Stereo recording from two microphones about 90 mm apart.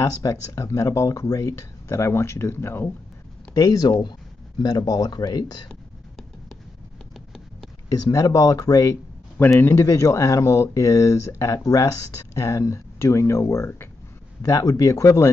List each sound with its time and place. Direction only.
0.0 s speech: 35° left (ahead or behind)
3.5 s speech: 45° left (ahead or behind)
5.7 s a sound: centre (ahead or behind)
7.9 s speech: 40° left (ahead or behind)
9.6 s speech: 30° left (ahead or behind)
14.4 s speech: 40° left (ahead or behind)